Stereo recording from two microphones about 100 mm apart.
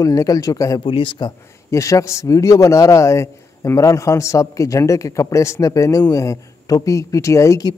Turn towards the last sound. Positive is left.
turn(degrees=30)  # may be behind; listen again after turning